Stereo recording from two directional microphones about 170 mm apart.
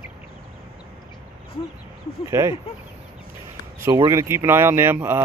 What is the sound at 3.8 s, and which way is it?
Speech, 20° right (ahead or behind).